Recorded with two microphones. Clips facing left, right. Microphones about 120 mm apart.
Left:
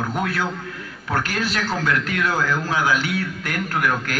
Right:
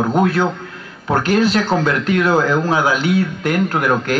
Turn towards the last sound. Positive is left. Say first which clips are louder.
# right 6 dB
turn(degrees=-25)  # may be behind; listen again after turning